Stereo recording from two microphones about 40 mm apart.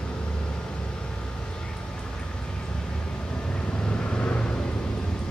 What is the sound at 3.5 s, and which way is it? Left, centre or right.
Vehicle, left.